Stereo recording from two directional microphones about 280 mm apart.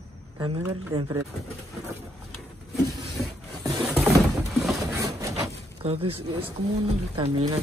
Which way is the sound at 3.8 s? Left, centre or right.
Centre.